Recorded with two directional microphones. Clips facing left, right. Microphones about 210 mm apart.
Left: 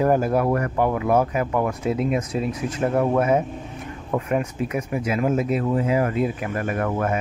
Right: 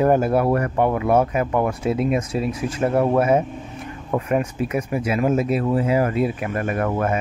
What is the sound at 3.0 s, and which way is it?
Speech, 30° right (ahead or behind).